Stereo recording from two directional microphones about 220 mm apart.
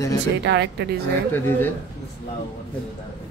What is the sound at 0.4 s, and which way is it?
Speech, 50° right (ahead or behind).